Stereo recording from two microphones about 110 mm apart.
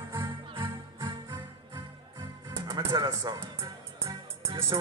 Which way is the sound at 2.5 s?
30° right (ahead or behind).